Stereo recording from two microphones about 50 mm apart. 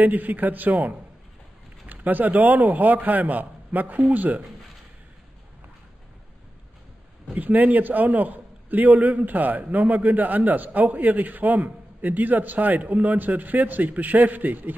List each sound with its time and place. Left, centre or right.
0.0 s a man's voice: right
7.3 s a man's voice: right